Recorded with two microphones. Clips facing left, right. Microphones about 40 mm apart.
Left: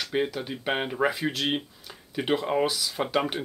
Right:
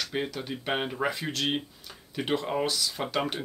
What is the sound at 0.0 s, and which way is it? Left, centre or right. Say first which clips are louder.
Speech: left 4 dB; centre.